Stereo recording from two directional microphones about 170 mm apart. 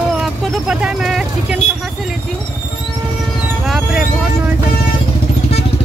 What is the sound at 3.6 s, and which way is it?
Speech, 5° right (ahead or behind).